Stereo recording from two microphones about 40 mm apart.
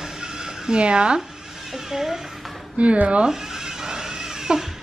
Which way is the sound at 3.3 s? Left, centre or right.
Centre.